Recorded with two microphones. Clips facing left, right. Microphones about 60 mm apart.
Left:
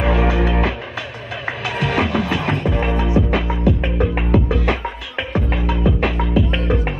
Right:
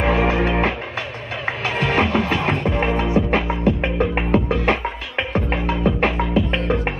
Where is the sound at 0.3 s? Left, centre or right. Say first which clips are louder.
Even; right.